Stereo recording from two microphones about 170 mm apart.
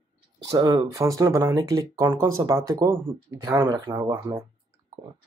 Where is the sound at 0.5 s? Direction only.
25° right (ahead or behind).